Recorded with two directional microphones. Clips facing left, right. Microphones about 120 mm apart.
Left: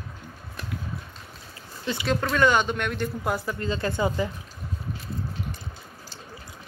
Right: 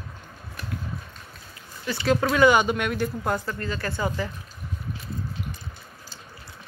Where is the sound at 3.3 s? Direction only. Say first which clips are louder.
Even; 15° left (ahead or behind).